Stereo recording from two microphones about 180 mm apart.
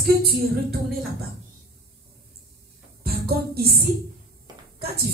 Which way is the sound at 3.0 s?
60° right (ahead or behind).